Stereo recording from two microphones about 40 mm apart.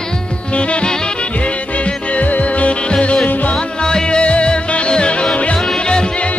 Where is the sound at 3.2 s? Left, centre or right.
Left.